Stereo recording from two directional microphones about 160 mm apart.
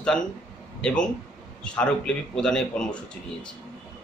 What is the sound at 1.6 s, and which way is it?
A man's voice, 5° left (ahead or behind).